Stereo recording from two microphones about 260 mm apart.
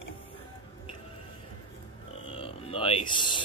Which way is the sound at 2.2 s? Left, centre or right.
Left.